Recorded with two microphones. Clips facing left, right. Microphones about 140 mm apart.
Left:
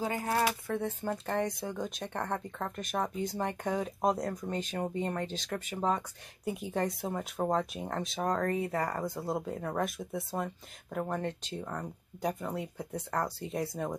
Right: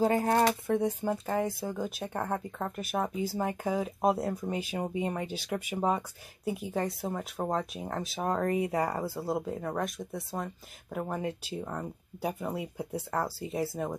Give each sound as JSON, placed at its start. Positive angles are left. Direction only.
{"t": 0.0, "sound": "speech", "side_deg": -35}
{"t": 0.7, "sound": "speech", "side_deg": -15}